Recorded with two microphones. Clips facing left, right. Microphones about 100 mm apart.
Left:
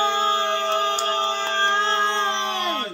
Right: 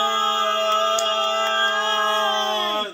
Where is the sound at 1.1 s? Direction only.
20° left (ahead or behind).